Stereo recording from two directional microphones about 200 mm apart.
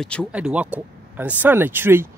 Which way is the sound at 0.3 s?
5° right (ahead or behind).